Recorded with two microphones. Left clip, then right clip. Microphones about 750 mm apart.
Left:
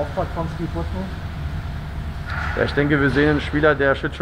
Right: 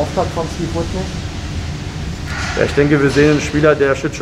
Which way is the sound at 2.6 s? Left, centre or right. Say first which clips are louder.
Right 6 dB; left.